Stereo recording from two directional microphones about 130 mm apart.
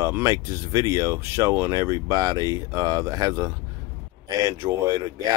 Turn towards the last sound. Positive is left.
turn(degrees=-25)  # may be behind; listen again after turning